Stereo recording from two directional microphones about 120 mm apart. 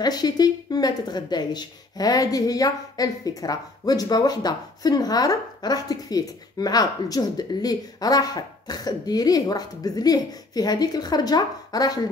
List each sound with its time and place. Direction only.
0.0 s speech: 35° left (ahead or behind)